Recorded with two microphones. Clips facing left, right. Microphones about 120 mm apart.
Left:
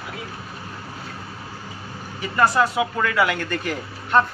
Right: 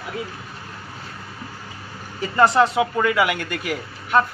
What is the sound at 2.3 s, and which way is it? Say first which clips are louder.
A man's voice: right 3 dB; 20° right (ahead or behind).